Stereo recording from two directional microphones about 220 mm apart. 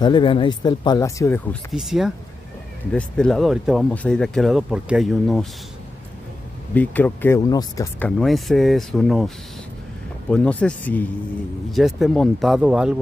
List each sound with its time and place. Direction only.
0.0 s speech: 20° left (ahead or behind); by 5.5 s centre (ahead or behind)
6.7 s speech: 10° left (ahead or behind)
8.2 s speech: centre (ahead or behind)
10.3 s speech: 5° left (ahead or behind)